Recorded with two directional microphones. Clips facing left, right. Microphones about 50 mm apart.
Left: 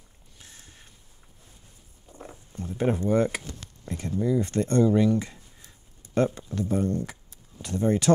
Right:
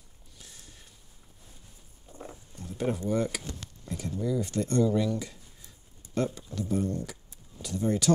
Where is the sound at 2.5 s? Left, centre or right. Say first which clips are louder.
Left 5 dB; left.